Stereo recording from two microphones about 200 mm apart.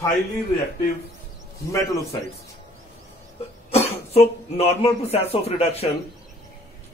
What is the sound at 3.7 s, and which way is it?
Speech, 30° left (ahead or behind).